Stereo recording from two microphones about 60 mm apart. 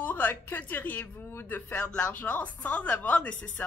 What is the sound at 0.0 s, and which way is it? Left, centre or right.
A woman's voice, left.